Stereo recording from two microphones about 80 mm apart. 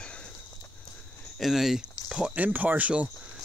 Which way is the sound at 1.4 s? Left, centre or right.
Centre.